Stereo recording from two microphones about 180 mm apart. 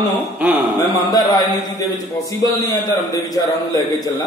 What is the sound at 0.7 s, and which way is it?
Speech, 20° left (ahead or behind).